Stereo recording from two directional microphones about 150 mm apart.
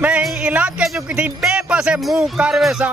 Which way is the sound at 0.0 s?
10° right (ahead or behind).